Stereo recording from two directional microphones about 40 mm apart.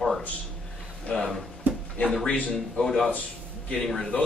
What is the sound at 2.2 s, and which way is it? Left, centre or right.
Speech, left.